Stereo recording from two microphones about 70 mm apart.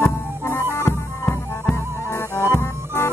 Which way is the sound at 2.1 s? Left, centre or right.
Left.